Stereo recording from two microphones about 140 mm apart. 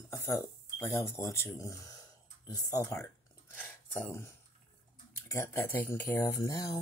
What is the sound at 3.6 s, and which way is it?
Speech, 15° left (ahead or behind).